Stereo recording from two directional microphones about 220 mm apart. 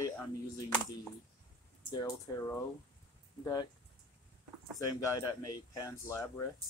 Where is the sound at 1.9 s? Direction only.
15° left (ahead or behind).